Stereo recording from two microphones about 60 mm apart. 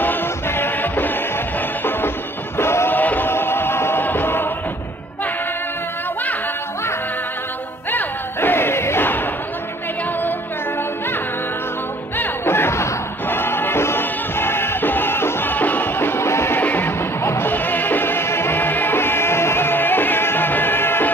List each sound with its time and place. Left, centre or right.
0.0 s music: left
2.5 s music: left
3.0 s music: left
7.9 s battle cry: left
12.2 s music: left
16.6 s music: left
17.2 s music: left